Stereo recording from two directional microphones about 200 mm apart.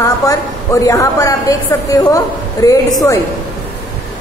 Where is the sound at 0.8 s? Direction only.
15° left (ahead or behind).